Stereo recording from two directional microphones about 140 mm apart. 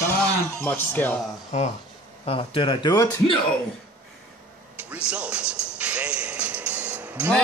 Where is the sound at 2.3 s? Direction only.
40° left (ahead or behind).